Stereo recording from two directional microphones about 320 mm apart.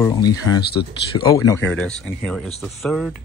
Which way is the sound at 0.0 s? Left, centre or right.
Centre.